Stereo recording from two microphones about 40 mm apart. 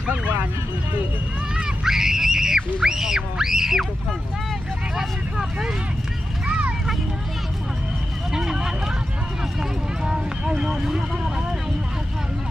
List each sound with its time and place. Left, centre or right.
1.9 s speech: centre
4.9 s speech: centre
6.4 s vehicle: right
8.3 s speech: centre